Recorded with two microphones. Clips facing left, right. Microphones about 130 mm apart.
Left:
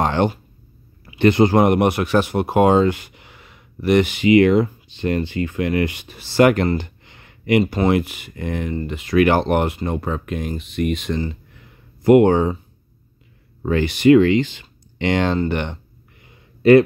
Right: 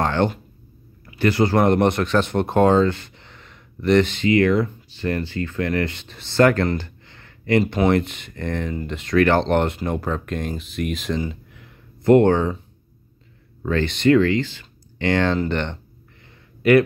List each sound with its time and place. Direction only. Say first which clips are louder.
0.0 s a sound: left 2 dB; 15° left (ahead or behind)
1.1 s speech: left 4 dB; 20° left (ahead or behind)
6.8 s a sound: left 3 dB; 15° left (ahead or behind)
7.6 s speech: even; centre (ahead or behind)
12.0 s speech: left 2 dB; 10° left (ahead or behind)
13.6 s speech: left 2 dB; 15° left (ahead or behind)
16.6 s a man's voice: left 4 dB; 30° left (ahead or behind)